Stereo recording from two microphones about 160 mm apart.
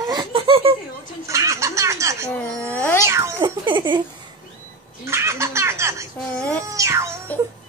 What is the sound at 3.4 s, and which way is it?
Speech, 30° right (ahead or behind).